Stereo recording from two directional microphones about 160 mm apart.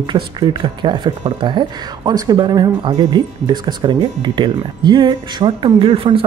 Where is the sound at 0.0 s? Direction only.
30° right (ahead or behind).